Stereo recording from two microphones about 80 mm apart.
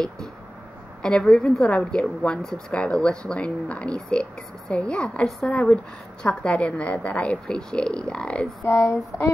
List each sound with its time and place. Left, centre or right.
1.0 s a woman's voice: centre
8.6 s speech: left